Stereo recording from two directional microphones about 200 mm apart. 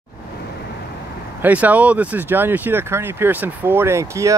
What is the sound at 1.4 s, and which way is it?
Speech, 10° right (ahead or behind).